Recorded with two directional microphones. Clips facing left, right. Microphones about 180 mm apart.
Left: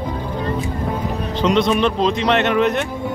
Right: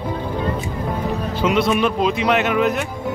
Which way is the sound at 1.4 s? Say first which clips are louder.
Left 1 dB; 5° right (ahead or behind).